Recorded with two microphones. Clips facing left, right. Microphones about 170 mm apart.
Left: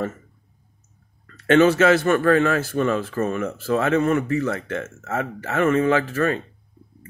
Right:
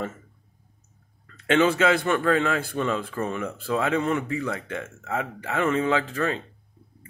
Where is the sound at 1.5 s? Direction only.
15° right (ahead or behind).